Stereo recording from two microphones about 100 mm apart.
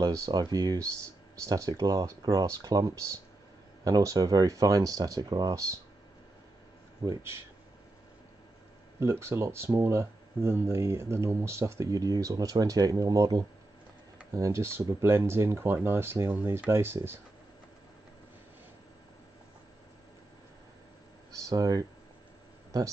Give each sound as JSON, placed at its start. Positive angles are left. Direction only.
{"t": 0.0, "sound": "speech", "side_deg": -35}
{"t": 9.0, "sound": "speech", "side_deg": -25}
{"t": 21.5, "sound": "speech", "side_deg": -35}